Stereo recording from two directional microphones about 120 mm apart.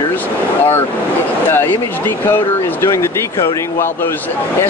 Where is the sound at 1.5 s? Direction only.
20° left (ahead or behind).